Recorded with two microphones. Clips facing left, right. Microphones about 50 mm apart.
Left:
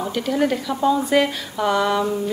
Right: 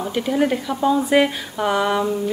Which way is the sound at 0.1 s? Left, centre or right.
Centre.